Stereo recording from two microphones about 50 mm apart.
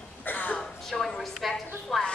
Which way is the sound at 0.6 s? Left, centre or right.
Centre.